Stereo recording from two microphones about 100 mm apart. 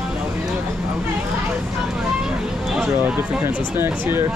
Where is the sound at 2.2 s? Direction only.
5° right (ahead or behind).